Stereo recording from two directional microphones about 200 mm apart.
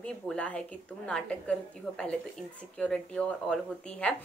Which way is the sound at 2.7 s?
5° left (ahead or behind).